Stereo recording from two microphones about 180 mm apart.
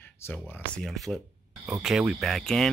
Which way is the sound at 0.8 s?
Centre (ahead or behind).